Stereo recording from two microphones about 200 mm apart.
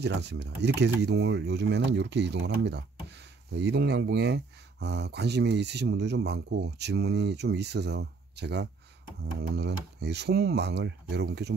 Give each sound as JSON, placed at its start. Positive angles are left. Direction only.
{"t": 0.0, "sound": "speech", "side_deg": -60}